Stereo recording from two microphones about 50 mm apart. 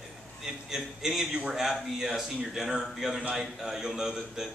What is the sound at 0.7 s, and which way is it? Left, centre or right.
A man's voice, centre.